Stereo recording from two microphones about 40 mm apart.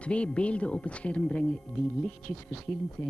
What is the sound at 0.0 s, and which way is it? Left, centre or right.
Speech, left.